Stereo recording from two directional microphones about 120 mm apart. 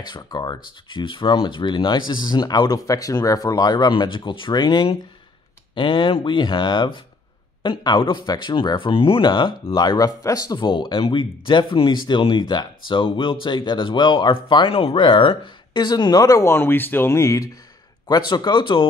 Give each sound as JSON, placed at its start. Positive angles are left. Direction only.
{"t": 0.1, "sound": "speech", "side_deg": 35}
{"t": 18.0, "sound": "speech", "side_deg": 35}